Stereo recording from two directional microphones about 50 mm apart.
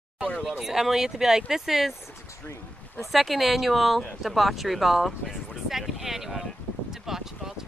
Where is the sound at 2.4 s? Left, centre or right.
Left.